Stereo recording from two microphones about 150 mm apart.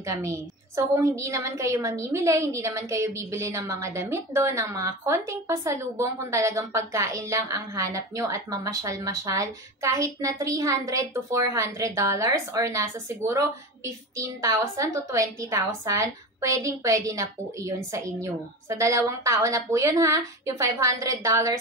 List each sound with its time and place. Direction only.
0.0 s a woman's voice: 20° right (ahead or behind)